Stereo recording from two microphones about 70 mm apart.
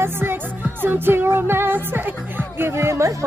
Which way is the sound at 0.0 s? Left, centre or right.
Right.